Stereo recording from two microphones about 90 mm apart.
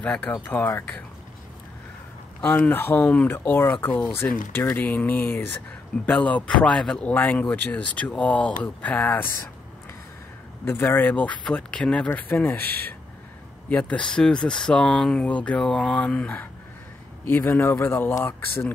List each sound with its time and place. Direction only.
0.0 s speech: 15° left (ahead or behind)
2.4 s speech: 20° left (ahead or behind)
10.6 s speech: 25° left (ahead or behind)